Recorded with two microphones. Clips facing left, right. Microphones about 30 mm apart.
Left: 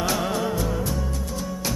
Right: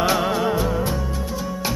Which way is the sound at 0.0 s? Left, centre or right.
Right.